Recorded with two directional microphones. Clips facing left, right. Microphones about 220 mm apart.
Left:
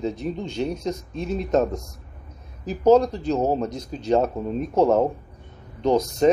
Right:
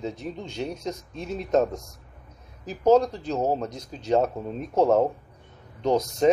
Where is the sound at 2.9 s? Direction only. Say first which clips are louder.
Left 3 dB; 5° right (ahead or behind).